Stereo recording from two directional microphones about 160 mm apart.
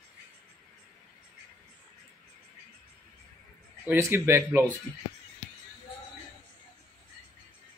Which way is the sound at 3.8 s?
15° right (ahead or behind).